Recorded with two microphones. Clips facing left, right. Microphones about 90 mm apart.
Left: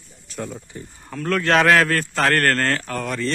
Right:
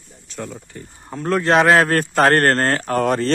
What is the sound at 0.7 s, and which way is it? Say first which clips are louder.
Speech: even; 15° left (ahead or behind).